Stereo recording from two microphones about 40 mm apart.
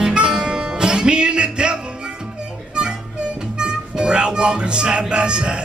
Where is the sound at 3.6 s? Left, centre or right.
Right.